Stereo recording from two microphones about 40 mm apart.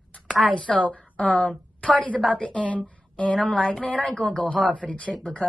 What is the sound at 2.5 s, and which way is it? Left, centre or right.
Speech, left.